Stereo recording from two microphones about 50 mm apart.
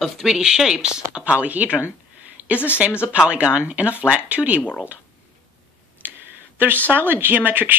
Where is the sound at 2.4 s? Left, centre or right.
Right.